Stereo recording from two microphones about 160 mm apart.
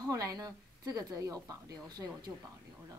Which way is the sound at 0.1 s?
20° right (ahead or behind).